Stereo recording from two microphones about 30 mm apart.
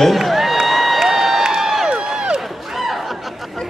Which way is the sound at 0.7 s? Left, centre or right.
Centre.